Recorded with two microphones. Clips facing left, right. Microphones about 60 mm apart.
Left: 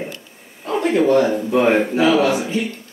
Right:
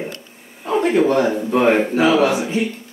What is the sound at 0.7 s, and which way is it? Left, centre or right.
Speech, centre.